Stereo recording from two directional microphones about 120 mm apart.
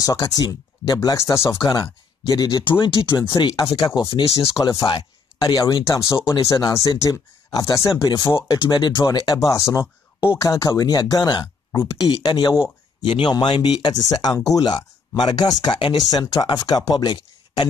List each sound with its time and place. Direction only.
0.0 s speech: 30° left (ahead or behind)
16.0 s speech: 30° left (ahead or behind)